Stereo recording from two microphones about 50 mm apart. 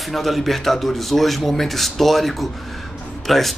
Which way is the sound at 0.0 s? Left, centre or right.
Centre.